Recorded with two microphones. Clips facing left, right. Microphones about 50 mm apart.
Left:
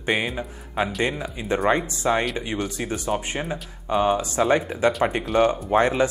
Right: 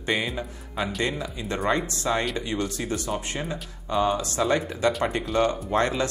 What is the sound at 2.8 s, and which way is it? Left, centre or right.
Speech, left.